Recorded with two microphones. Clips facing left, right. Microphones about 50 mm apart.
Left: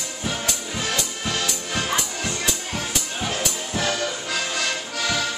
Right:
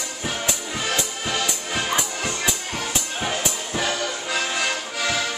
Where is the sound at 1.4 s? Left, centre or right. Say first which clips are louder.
Right 1 dB; centre.